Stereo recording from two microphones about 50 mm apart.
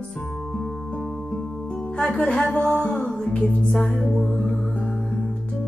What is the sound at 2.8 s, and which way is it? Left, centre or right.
Music, left.